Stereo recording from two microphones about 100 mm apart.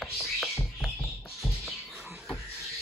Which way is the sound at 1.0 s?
20° left (ahead or behind).